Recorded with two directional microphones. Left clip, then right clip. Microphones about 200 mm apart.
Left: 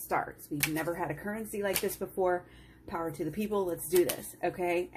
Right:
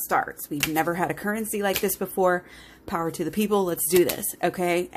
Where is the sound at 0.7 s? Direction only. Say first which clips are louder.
Right 13 dB; 50° right (ahead or behind).